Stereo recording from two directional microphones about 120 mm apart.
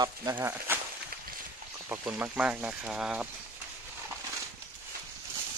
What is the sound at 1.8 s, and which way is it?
Speech, 15° right (ahead or behind).